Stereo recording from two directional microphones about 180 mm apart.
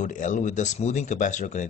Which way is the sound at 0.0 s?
45° left (ahead or behind).